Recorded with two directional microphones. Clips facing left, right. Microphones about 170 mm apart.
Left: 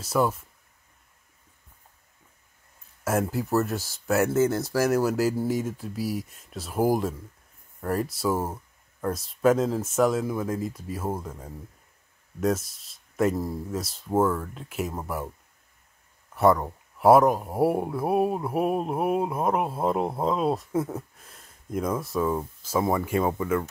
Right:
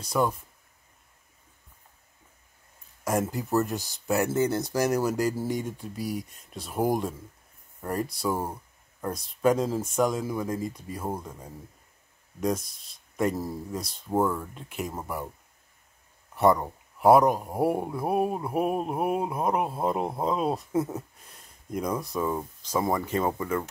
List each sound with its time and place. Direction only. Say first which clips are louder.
0.0 s speech: left 2 dB; 5° left (ahead or behind)
3.0 s speech: left 2 dB; 5° left (ahead or behind)
16.3 s speech: left 1 dB; centre (ahead or behind)